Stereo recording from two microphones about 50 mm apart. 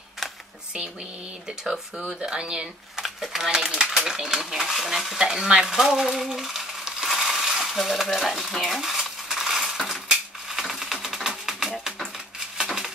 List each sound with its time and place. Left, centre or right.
1.6 s speech: centre
3.0 s speech: centre
5.7 s a sound: centre